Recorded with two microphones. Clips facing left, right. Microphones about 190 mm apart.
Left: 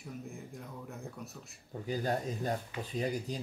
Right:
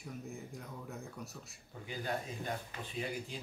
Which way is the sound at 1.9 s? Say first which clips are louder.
Left 6 dB; 40° left (ahead or behind).